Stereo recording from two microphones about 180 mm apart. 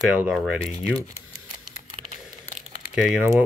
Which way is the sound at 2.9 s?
5° right (ahead or behind).